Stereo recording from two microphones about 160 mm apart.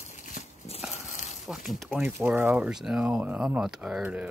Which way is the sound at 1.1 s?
50° left (ahead or behind).